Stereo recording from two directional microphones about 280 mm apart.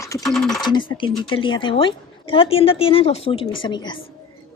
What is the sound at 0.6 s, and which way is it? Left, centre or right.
A woman's voice, centre.